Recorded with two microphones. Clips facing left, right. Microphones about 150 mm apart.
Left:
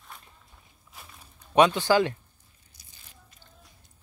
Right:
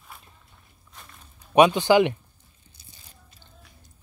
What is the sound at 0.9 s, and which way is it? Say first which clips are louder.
Walk: even; 5° left (ahead or behind).